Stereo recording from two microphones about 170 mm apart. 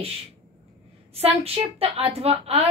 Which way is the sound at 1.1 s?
35° right (ahead or behind).